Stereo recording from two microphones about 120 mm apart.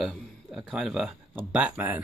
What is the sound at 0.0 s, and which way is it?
A man's voice, centre (ahead or behind).